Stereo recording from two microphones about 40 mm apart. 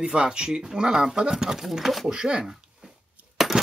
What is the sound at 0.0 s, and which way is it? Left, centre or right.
Speech, right.